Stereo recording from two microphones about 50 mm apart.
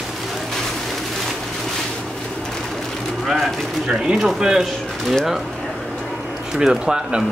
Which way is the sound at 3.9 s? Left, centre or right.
Centre.